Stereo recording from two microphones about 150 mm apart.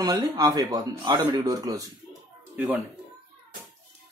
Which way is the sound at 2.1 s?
5° right (ahead or behind).